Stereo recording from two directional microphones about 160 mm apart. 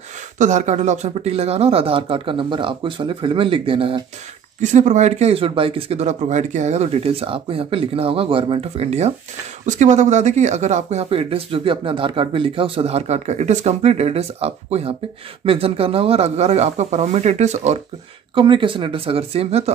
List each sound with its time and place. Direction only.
0.4 s speech: 50° right (ahead or behind)
4.6 s speech: 50° right (ahead or behind)
18.3 s speech: 30° right (ahead or behind)